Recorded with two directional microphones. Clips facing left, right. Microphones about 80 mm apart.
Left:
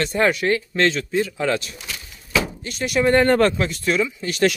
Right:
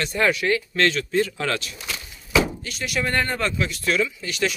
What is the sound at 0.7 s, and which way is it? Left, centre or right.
Speech, left.